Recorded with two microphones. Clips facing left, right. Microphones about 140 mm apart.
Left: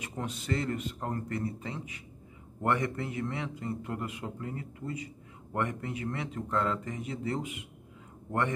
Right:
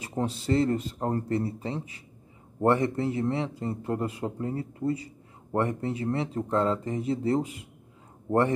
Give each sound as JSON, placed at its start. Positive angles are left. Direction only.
{"t": 0.0, "sound": "a man's voice", "side_deg": -30}